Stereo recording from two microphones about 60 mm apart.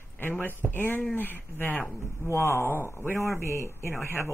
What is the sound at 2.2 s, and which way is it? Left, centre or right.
Speech, left.